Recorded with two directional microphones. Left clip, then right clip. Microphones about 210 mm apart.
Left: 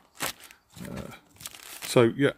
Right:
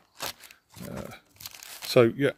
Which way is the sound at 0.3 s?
20° right (ahead or behind).